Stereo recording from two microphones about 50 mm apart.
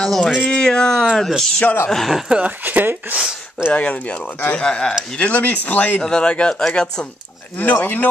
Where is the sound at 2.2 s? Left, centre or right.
Right.